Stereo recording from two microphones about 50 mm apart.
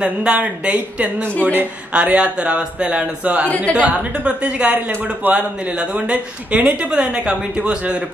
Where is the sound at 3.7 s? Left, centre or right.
Right.